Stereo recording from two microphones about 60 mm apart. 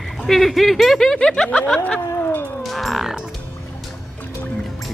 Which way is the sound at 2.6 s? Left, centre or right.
Centre.